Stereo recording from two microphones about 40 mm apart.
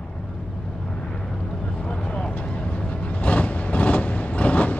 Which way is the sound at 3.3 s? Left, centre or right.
Left.